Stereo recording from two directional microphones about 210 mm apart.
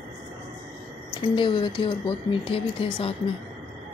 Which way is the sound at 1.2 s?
25° left (ahead or behind).